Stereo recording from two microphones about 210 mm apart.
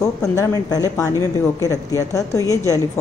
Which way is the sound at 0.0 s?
15° left (ahead or behind).